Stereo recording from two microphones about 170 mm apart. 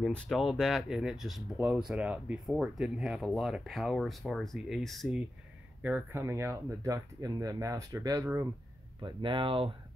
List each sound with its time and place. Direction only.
0.0 s speech: 5° left (ahead or behind); by 8.5 s 15° right (ahead or behind)
9.0 s speech: 30° right (ahead or behind)